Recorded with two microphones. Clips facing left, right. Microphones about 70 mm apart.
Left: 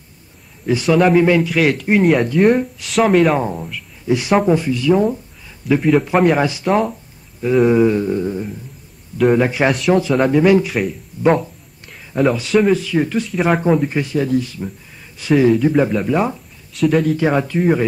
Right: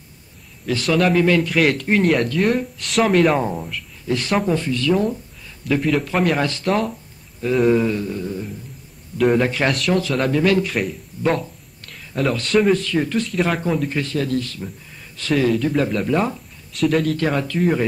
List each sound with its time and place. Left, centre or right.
0.7 s speech: centre
1.1 s speech: centre
1.4 s speech: centre
7.8 s a sound: left
9.2 s speech: centre
11.2 s a sound: centre
12.2 s speech: centre
13.7 s speech: centre